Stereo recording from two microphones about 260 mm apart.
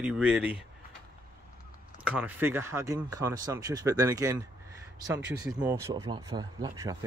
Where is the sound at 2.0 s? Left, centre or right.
Centre.